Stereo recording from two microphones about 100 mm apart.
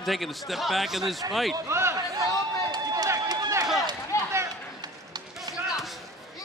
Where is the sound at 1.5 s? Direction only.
25° right (ahead or behind).